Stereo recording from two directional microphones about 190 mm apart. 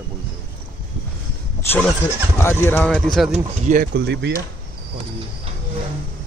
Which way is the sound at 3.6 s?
45° right (ahead or behind).